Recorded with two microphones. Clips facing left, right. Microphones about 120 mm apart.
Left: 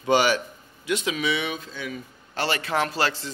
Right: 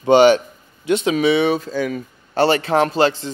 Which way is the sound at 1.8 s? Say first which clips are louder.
Right 12 dB; 50° right (ahead or behind).